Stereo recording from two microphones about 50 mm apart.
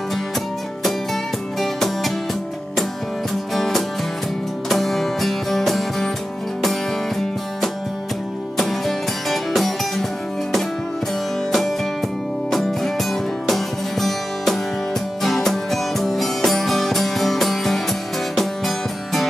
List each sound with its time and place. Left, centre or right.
1.6 s music: centre
3.5 s music: centre
8.5 s music: centre
12.4 s music: centre